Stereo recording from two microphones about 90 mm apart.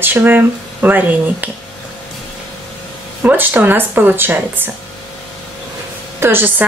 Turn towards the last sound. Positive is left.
turn(degrees=-25)  # may be behind; listen again after turning